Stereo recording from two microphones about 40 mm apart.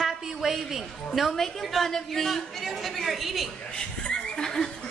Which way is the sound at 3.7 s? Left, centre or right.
Centre.